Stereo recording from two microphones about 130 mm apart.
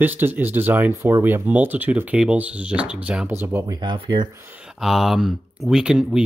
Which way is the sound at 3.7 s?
35° right (ahead or behind).